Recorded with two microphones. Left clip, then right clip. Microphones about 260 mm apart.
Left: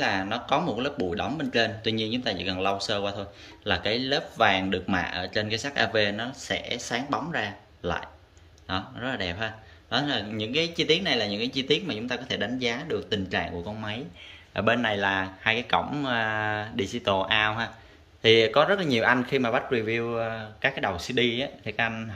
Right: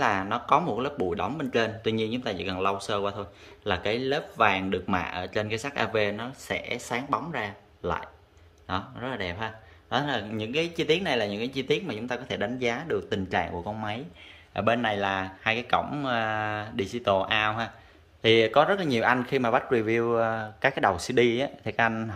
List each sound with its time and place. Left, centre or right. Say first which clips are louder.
0.0 s speech: right 1 dB; centre